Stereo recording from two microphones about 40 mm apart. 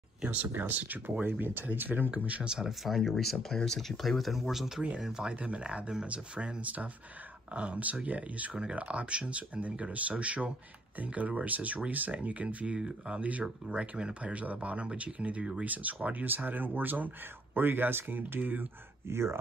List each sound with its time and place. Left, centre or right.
0.6 s speech: right
1.2 s speech: right
2.0 s speech: right
2.4 s speech: centre
2.8 s speech: centre
5.3 s speech: right
12.7 s speech: right
13.7 s speech: right
14.3 s speech: right
17.6 s speech: right
19.1 s speech: right